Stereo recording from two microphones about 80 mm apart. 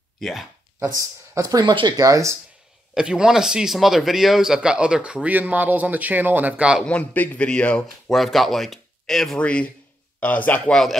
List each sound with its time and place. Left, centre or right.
0.2 s speech: centre
0.7 s speech: right
1.7 s speech: right
2.0 s speech: right
2.9 s a man's voice: centre
6.9 s a man's voice: centre
8.1 s speech: centre
9.4 s a man's voice: centre
10.7 s speech: centre